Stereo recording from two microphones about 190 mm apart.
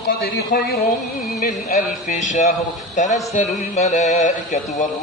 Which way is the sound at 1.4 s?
40° left (ahead or behind).